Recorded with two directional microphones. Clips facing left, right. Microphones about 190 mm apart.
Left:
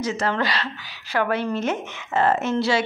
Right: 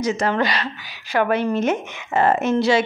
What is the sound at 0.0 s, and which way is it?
A woman's voice, 15° right (ahead or behind).